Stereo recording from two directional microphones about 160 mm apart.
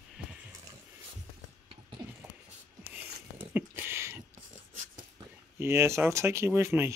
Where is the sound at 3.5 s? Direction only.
15° right (ahead or behind).